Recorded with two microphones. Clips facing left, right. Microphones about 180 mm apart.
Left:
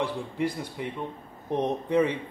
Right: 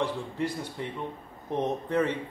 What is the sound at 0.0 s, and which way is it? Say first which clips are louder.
Speech: left 1 dB; 10° left (ahead or behind).